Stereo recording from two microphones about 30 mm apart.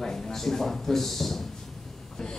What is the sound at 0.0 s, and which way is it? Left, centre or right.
A man's voice, centre.